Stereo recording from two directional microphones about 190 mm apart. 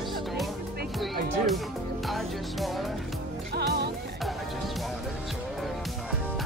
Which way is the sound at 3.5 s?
60° right (ahead or behind).